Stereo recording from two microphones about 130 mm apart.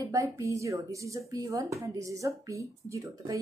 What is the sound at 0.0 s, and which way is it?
A woman's voice, 25° right (ahead or behind).